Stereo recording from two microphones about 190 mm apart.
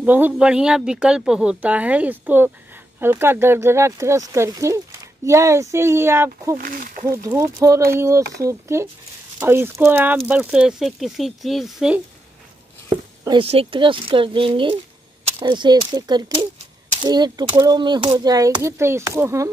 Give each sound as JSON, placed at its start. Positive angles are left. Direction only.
{"t": 0.0, "sound": "speech", "side_deg": -10}
{"t": 6.6, "sound": "speech", "side_deg": -45}
{"t": 7.1, "sound": "speech", "side_deg": -15}
{"t": 13.2, "sound": "speech", "side_deg": -25}